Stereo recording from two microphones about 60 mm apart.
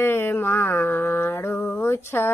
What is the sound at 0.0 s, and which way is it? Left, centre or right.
Mantra, left.